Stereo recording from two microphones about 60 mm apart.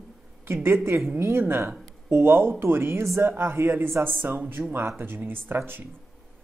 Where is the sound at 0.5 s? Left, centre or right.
Right.